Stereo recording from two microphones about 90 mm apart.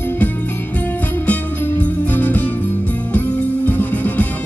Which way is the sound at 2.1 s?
20° left (ahead or behind).